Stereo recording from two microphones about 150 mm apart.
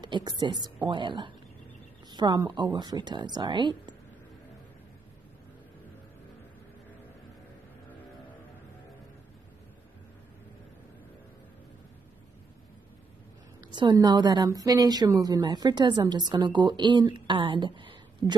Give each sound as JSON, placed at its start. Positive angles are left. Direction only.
{"t": 0.0, "sound": "a woman's voice", "side_deg": -30}
{"t": 13.7, "sound": "a woman's voice", "side_deg": -30}